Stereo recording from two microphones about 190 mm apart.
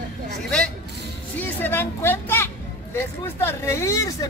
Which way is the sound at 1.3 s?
10° left (ahead or behind).